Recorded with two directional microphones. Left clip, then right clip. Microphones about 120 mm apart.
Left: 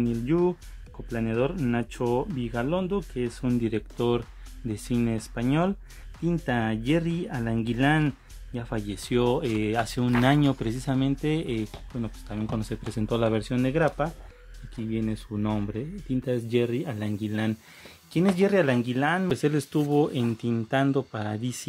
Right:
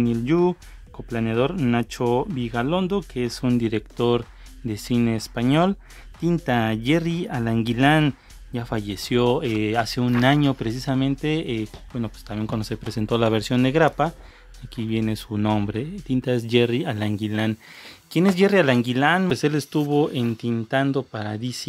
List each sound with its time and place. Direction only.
0.0 s speech: 35° right (ahead or behind)
11.9 s speech: 30° right (ahead or behind)
17.3 s speech: 35° right (ahead or behind)
19.3 s speech: 20° right (ahead or behind); by 21.6 s 5° right (ahead or behind)